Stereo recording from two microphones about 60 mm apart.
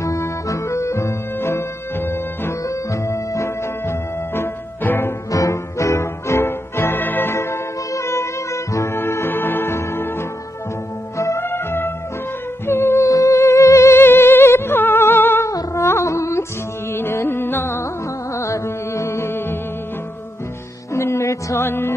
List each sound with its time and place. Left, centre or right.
0.0 s music: left
2.7 s music: left
4.4 s music: left
5.3 s music: left
7.3 s music: left
11.1 s music: left
11.4 s music: left
12.6 s humming: left
13.1 s humming: left
15.7 s a sound: left
16.9 s music: left
18.3 s music: left
20.9 s music: left
21.6 s music: left